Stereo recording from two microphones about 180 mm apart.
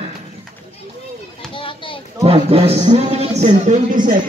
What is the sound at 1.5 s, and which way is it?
Children playing, 30° left (ahead or behind).